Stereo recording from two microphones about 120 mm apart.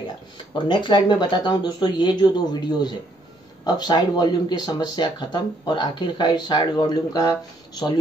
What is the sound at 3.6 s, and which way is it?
Speech, 35° left (ahead or behind).